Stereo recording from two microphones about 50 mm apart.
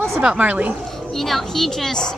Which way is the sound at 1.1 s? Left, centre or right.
Centre.